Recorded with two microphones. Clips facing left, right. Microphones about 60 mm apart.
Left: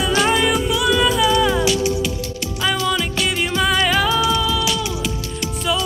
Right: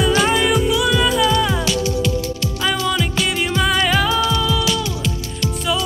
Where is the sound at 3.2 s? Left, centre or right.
Centre.